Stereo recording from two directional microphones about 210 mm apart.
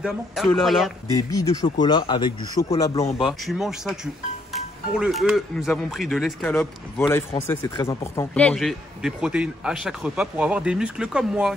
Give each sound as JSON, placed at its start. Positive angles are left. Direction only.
{"t": 0.5, "sound": "speech", "side_deg": 0}
{"t": 1.1, "sound": "speech", "side_deg": 15}
{"t": 3.2, "sound": "speech", "side_deg": 0}